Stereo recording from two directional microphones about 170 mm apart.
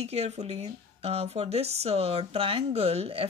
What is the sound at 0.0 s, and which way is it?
Speech, 40° right (ahead or behind).